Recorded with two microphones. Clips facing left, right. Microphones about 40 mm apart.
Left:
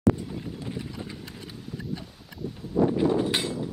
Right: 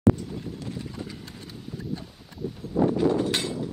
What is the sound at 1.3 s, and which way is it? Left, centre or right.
Clip-clop, centre.